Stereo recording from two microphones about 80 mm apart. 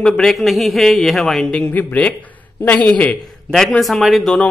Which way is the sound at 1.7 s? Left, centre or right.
Left.